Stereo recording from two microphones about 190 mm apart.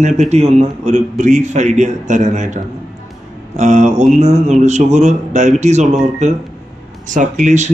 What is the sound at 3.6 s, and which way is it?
A man's voice, 40° right (ahead or behind).